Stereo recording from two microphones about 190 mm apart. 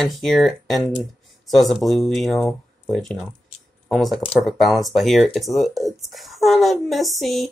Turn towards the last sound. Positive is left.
turn(degrees=0)  # may be behind; listen again after turning